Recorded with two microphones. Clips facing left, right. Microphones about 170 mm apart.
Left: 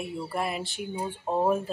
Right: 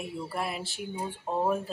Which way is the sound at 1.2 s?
20° left (ahead or behind).